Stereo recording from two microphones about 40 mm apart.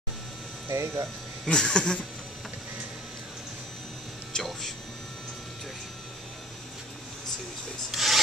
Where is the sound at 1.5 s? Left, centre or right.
Centre.